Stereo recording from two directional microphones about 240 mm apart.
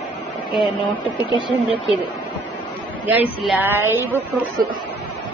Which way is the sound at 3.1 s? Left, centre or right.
Centre.